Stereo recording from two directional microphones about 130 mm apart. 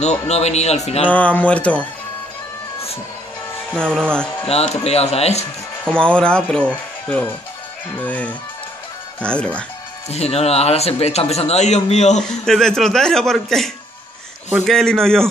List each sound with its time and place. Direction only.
0.3 s a man's voice: 55° left (ahead or behind)
1.0 s speech: 10° left (ahead or behind)
3.7 s speech: 5° left (ahead or behind)
4.5 s speech: 50° left (ahead or behind)
5.9 s speech: 5° left (ahead or behind)
10.0 s speech: 55° left (ahead or behind)
12.2 s a man's voice: 5° left (ahead or behind)